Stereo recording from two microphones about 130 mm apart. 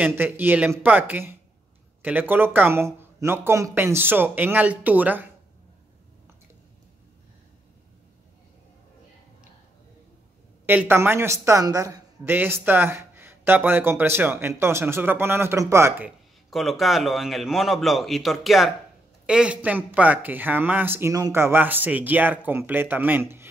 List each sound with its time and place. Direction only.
0.0 s speech: 15° right (ahead or behind)
10.7 s a woman's voice: 15° right (ahead or behind)
12.3 s speech: 15° right (ahead or behind)
16.4 s a man's voice: centre (ahead or behind); by 23.5 s 15° right (ahead or behind)